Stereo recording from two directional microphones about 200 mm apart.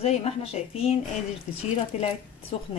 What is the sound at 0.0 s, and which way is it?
Speech, 30° left (ahead or behind).